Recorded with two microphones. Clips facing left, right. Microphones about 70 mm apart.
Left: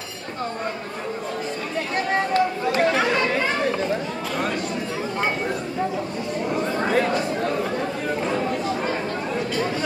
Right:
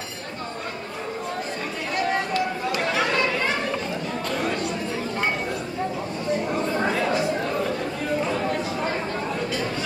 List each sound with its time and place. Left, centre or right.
2.0 s run: left